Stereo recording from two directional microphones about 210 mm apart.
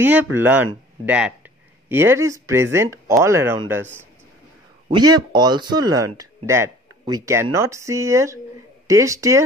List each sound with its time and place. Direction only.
0.0 s speech: 10° right (ahead or behind)
4.9 s speech: 20° right (ahead or behind)